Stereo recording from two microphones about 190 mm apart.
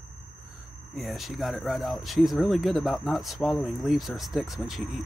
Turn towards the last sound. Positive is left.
turn(degrees=0)  # may be behind; listen again after turning